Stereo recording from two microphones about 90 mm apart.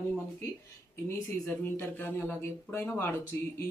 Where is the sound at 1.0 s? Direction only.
30° left (ahead or behind).